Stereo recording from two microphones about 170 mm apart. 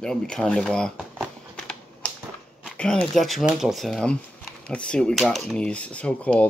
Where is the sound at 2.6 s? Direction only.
5° left (ahead or behind).